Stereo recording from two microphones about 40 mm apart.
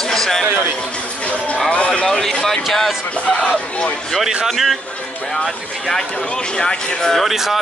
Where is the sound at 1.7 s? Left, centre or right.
Left.